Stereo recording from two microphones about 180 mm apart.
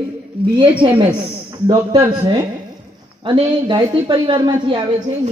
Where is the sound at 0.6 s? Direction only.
25° right (ahead or behind).